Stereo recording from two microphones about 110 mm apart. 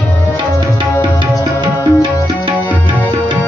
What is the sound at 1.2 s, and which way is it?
Tabla, 50° right (ahead or behind).